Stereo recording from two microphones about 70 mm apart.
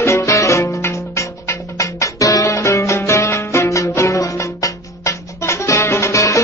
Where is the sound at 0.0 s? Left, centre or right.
Left.